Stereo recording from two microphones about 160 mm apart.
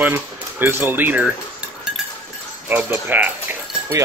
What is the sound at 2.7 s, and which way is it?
Speech, 10° right (ahead or behind).